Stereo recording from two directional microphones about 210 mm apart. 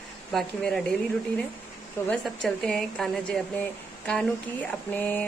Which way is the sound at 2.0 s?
10° left (ahead or behind).